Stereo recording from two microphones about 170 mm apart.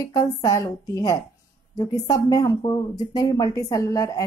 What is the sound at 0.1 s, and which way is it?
Speech, 20° left (ahead or behind).